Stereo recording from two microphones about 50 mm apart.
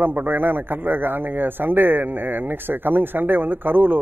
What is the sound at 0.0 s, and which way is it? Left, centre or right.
A man's voice, right.